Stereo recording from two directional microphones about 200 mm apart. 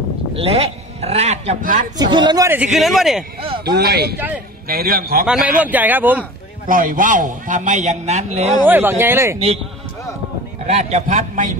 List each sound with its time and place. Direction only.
0.3 s a man's voice: 30° right (ahead or behind)
2.0 s a man's voice: 20° right (ahead or behind); by 3.3 s centre (ahead or behind)
3.6 s speech: 55° right (ahead or behind)
5.2 s a man's voice: 5° right (ahead or behind)
6.7 s a man's voice: 45° right (ahead or behind)
8.6 s a man's voice: 10° right (ahead or behind)
10.7 s a man's voice: 35° right (ahead or behind)